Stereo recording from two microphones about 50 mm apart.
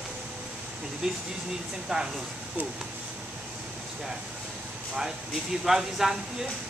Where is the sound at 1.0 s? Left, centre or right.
Centre.